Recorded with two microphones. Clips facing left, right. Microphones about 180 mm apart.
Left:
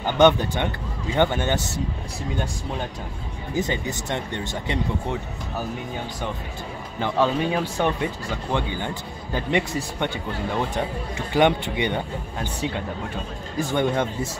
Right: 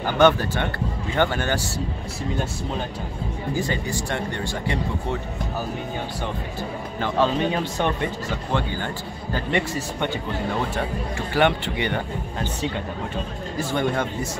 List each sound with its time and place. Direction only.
0.0 s speech: 20° left (ahead or behind)
3.5 s speech: 20° left (ahead or behind)
7.0 s speech: 10° left (ahead or behind)
11.1 s speech: 15° left (ahead or behind)